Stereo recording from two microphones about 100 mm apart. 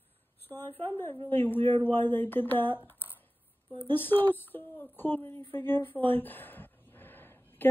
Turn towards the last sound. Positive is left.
turn(degrees=20)  # may be behind; listen again after turning